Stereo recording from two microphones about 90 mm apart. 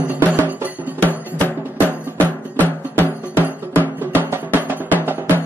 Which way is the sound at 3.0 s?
25° right (ahead or behind).